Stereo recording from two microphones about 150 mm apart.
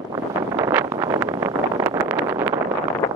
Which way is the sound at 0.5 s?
15° right (ahead or behind).